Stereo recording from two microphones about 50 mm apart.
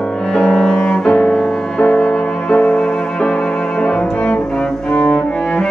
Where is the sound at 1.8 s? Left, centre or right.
Left.